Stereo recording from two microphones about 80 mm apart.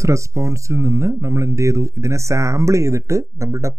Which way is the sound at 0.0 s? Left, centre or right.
Right.